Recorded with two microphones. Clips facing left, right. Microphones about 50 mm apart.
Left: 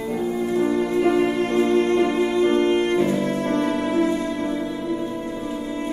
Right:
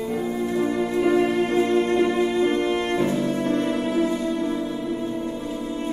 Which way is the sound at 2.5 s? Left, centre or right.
Centre.